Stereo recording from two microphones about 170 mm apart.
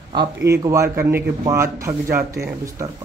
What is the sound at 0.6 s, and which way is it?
Speech, 15° right (ahead or behind).